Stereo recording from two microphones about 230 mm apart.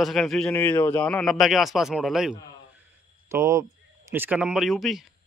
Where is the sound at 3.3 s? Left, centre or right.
Centre.